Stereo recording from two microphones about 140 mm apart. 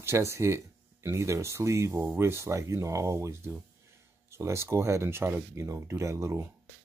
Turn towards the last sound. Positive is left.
turn(degrees=-20)  # may be behind; listen again after turning